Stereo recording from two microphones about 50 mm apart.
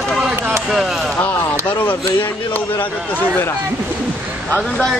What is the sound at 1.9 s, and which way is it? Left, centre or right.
A man's voice, left.